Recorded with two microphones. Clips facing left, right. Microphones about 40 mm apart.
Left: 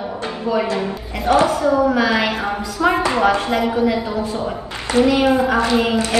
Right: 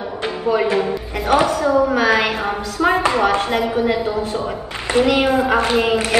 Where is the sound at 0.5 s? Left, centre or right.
Right.